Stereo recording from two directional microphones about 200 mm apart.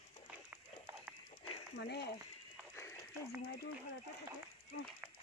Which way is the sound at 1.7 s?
55° left (ahead or behind).